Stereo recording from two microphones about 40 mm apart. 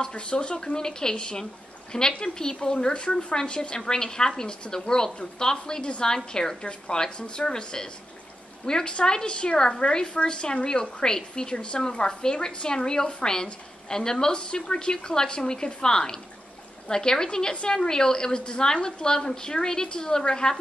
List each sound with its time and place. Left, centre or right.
0.1 s a woman's voice: left